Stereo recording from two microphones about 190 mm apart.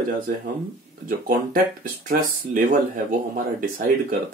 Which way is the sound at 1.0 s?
50° right (ahead or behind).